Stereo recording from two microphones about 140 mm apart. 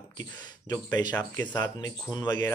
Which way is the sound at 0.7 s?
30° left (ahead or behind).